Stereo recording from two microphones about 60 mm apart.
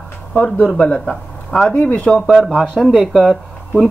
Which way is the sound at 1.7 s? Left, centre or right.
Left.